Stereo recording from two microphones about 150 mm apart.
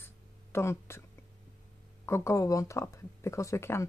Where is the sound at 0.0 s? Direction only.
15° left (ahead or behind).